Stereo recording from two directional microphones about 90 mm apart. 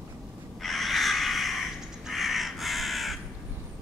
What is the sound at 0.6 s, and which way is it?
Crow, centre (ahead or behind).